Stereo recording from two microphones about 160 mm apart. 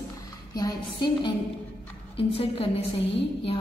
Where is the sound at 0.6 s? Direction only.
25° left (ahead or behind).